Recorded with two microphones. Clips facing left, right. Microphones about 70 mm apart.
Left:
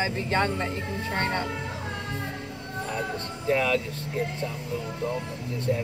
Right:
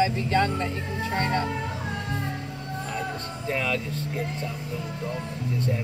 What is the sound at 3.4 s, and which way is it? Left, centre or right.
Speech, centre.